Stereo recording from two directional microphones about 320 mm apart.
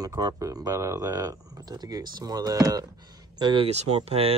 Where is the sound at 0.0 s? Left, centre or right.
Centre.